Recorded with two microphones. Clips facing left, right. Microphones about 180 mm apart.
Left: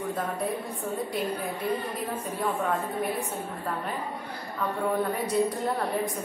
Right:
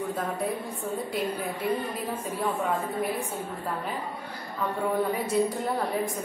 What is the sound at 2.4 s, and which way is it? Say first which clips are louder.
Speech: even; centre (ahead or behind).